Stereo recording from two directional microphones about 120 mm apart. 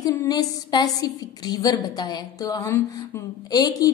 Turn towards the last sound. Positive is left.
turn(degrees=30)  # may be behind; listen again after turning